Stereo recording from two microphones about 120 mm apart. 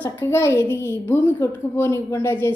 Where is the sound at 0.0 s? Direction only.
20° left (ahead or behind).